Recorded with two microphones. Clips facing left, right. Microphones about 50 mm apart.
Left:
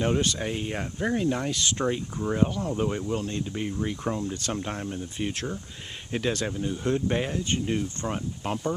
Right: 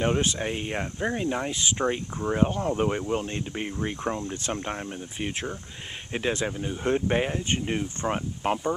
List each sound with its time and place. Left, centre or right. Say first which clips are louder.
0.0 s speech: right 1 dB; right
2.5 s speech: right 2 dB; right